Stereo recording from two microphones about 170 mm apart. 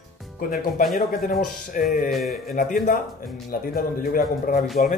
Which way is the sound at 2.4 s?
55° left (ahead or behind).